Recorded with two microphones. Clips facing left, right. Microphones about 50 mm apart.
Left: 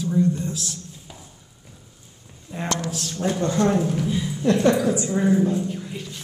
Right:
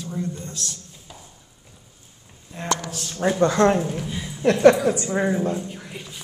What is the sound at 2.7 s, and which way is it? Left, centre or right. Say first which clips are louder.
Speech: right 2 dB; centre.